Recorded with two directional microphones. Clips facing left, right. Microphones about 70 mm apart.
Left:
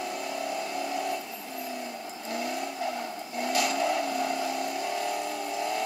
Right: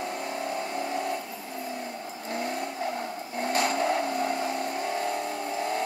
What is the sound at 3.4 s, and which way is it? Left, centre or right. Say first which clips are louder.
Vehicle: right 1 dB; right.